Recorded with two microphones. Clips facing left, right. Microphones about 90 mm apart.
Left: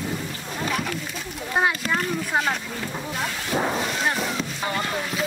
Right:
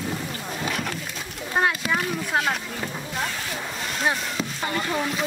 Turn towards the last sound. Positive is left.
turn(degrees=0)  # may be behind; listen again after turning